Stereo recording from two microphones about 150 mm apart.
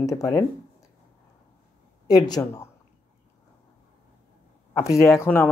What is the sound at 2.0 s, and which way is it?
Speech, 25° left (ahead or behind).